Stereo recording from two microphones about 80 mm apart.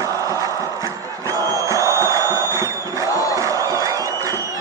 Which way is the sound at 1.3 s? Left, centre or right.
Right.